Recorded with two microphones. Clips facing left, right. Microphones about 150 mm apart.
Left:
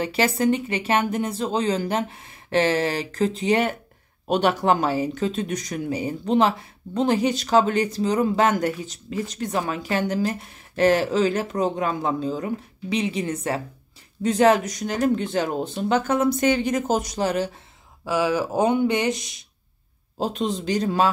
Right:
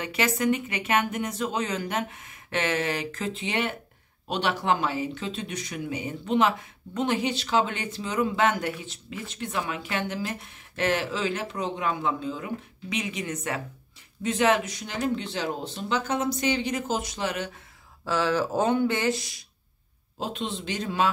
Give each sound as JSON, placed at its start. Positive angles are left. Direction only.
{"t": 0.0, "sound": "speech", "side_deg": 30}
{"t": 18.0, "sound": "speech", "side_deg": 10}
{"t": 20.2, "sound": "speech", "side_deg": 40}